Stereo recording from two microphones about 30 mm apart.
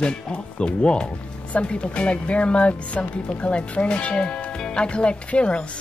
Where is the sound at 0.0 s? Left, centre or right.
Left.